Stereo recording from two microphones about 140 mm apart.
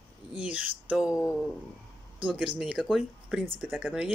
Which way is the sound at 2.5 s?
5° right (ahead or behind).